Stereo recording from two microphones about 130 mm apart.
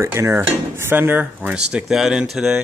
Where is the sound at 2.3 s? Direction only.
5° right (ahead or behind).